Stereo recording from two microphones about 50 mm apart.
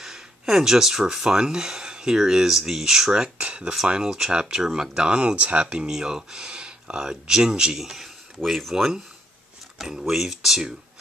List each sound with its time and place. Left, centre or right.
0.0 s speech: centre
3.1 s speech: right; by 8.9 s centre
9.9 s speech: centre